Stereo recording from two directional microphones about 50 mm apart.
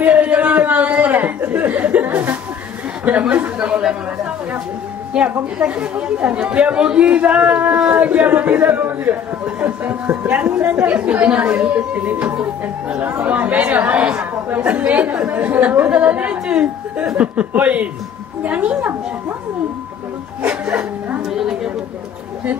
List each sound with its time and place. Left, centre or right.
0.0 s a sound: right
3.1 s speech: right
3.5 s chatter: right
5.6 s a man's voice: right
20.4 s a man's voice: right
21.3 s a woman's voice: centre